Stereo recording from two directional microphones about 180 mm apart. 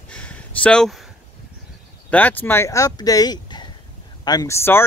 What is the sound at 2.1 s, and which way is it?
Speech, 10° left (ahead or behind).